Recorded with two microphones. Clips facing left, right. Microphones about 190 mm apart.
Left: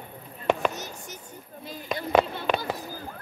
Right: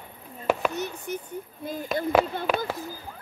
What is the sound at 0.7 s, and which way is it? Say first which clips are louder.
Speech: right 8 dB; 60° right (ahead or behind).